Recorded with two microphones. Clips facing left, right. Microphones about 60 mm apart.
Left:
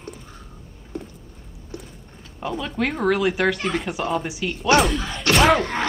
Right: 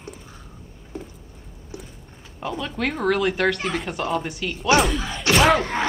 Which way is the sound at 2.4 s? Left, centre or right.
Centre.